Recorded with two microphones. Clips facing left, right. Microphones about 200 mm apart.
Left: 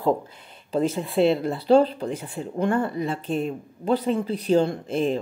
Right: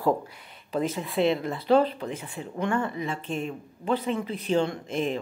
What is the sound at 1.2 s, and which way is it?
Speech, 35° left (ahead or behind).